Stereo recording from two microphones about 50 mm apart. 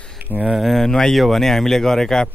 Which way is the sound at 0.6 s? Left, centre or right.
Centre.